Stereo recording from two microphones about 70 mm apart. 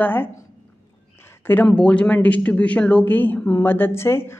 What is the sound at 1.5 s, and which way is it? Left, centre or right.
A woman's voice, left.